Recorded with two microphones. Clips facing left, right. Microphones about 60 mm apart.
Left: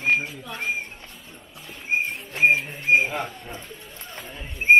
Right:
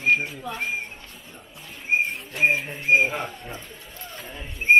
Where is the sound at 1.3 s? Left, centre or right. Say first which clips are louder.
Even; centre.